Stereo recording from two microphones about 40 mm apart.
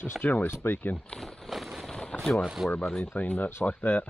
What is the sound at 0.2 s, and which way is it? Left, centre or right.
Speech, left.